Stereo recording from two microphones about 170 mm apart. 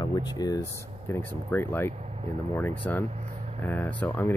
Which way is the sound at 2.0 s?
40° right (ahead or behind).